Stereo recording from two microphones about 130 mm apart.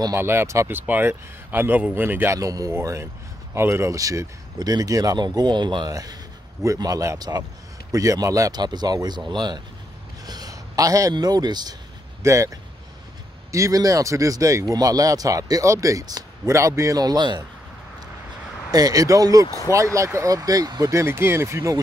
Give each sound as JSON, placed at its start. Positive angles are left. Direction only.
{"t": 0.0, "sound": "a man's voice", "side_deg": -20}
{"t": 18.7, "sound": "speech", "side_deg": -30}
{"t": 19.4, "sound": "speech", "side_deg": 25}
{"t": 19.7, "sound": "speech", "side_deg": -25}